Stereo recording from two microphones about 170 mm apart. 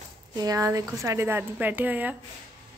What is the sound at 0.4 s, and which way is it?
A woman's voice, 20° right (ahead or behind).